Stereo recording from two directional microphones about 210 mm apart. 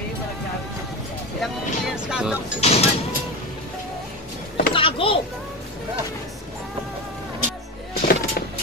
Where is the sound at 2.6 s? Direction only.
30° left (ahead or behind).